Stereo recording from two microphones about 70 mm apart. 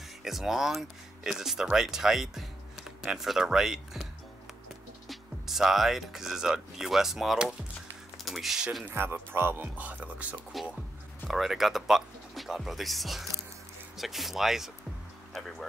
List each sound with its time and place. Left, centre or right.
0.2 s speech: centre
8.8 s speech: right
10.5 s speech: centre